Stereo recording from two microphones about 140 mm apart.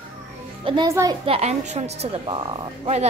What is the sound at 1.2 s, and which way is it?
A woman's voice, 45° right (ahead or behind).